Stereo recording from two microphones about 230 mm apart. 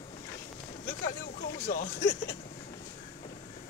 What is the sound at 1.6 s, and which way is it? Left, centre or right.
Speech, left.